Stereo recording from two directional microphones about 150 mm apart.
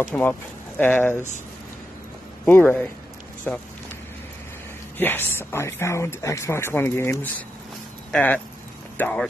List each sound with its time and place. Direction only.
0.0 s speech: 10° left (ahead or behind)
2.4 s speech: 10° left (ahead or behind)
4.9 s speech: 15° left (ahead or behind)